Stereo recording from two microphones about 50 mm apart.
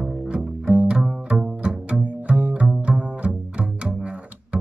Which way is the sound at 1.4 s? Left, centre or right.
Right.